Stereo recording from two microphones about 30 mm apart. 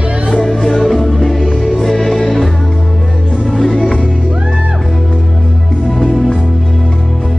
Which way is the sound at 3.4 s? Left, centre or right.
Centre.